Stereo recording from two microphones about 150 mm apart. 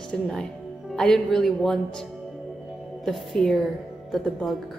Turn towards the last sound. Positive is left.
turn(degrees=0)  # may be behind; listen again after turning